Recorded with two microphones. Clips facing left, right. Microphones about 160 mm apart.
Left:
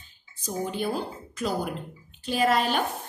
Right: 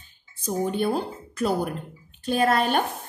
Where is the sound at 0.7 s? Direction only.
50° right (ahead or behind).